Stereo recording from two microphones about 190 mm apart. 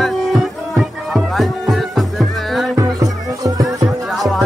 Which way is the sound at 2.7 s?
20° right (ahead or behind).